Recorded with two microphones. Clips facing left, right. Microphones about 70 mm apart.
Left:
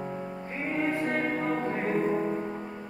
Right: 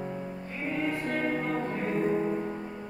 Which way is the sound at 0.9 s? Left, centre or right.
Left.